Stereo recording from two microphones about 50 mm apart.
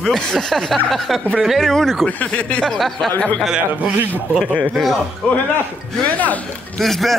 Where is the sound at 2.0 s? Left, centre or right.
Left.